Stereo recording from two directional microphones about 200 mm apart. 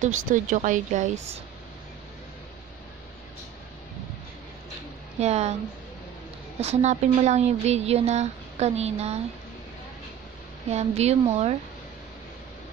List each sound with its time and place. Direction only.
0.0 s speech: 40° right (ahead or behind)
5.2 s speech: 35° right (ahead or behind)
6.6 s speech: 35° right (ahead or behind)
10.7 s speech: 35° right (ahead or behind)